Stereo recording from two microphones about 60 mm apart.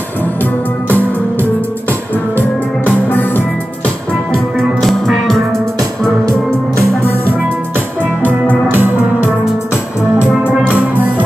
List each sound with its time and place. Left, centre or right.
0.2 s music: left
3.1 s music: left
4.3 s music: centre
8.7 s music: right